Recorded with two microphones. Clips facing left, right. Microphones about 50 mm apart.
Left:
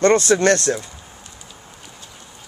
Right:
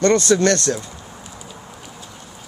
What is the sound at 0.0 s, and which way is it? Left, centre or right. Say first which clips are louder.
Speech: left 1 dB; left.